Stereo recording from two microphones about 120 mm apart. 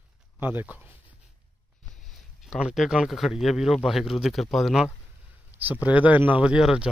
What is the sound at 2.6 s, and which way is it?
Speech, 5° right (ahead or behind).